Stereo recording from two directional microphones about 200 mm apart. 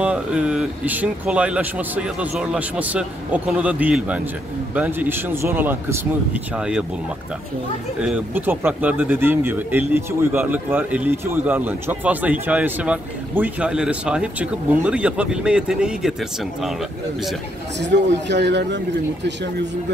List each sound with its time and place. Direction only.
0.0 s speech: 5° right (ahead or behind)
8.0 s speech: 10° right (ahead or behind)
17.7 s a man's voice: 60° right (ahead or behind)